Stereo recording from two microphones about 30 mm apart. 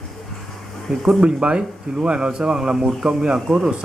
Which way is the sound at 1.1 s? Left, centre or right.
Right.